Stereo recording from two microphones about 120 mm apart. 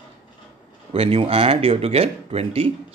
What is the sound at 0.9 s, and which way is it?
Speech, 50° right (ahead or behind).